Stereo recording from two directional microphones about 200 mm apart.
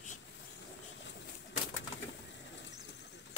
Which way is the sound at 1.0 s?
65° left (ahead or behind).